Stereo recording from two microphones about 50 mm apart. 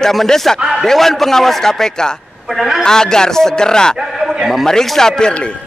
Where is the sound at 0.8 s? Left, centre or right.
Centre.